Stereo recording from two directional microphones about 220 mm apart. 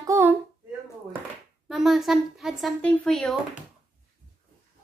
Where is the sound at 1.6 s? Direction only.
Centre (ahead or behind).